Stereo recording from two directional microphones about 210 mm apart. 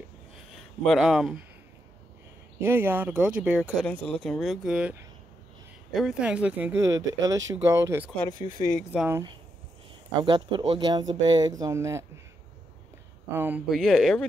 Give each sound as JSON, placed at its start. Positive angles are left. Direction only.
{"t": 0.5, "sound": "speech", "side_deg": 0}
{"t": 2.6, "sound": "speech", "side_deg": -10}
{"t": 3.8, "sound": "speech", "side_deg": 5}
{"t": 5.9, "sound": "speech", "side_deg": -5}
{"t": 8.3, "sound": "speech", "side_deg": 20}
{"t": 8.9, "sound": "speech", "side_deg": -5}
{"t": 10.2, "sound": "speech", "side_deg": -25}
{"t": 13.3, "sound": "speech", "side_deg": -10}